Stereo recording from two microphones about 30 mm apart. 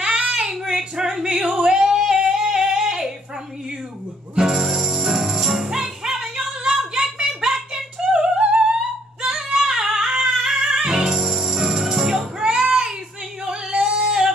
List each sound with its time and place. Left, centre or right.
0.0 s child singing: right
0.7 s female singing: centre
1.6 s singing: right
4.6 s music: centre
6.6 s a sound: right
8.1 s singing: right
9.6 s music: centre
11.1 s music: centre
12.4 s a sound: right
13.5 s singing: right